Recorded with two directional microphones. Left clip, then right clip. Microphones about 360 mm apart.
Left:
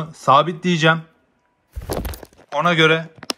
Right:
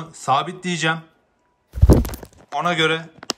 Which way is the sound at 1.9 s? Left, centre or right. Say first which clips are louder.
Right 8 dB; right.